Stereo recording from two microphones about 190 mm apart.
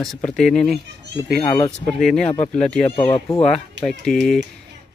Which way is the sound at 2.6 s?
5° left (ahead or behind).